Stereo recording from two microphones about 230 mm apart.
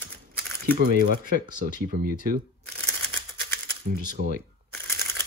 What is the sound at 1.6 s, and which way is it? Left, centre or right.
Speech, right.